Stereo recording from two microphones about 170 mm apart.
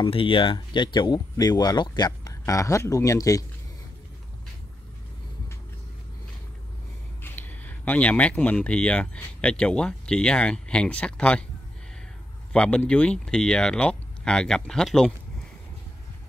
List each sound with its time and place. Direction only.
0.0 s speech: 30° left (ahead or behind)
7.2 s speech: 10° left (ahead or behind)
12.5 s speech: 5° left (ahead or behind)